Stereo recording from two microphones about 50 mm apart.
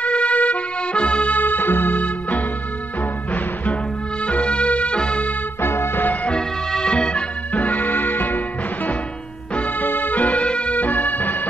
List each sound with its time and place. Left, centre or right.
0.0 s music: left
4.3 s music: left
5.6 s music: left
6.3 s music: centre
7.6 s music: left
9.6 s music: left
10.8 s music: left